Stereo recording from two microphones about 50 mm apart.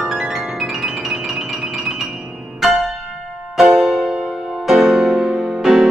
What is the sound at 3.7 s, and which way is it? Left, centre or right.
Music, centre.